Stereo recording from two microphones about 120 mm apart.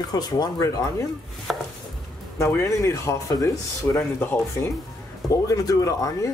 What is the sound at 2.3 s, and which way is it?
Speech, 25° left (ahead or behind).